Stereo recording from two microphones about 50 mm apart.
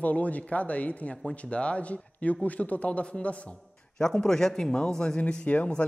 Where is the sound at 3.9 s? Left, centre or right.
Centre.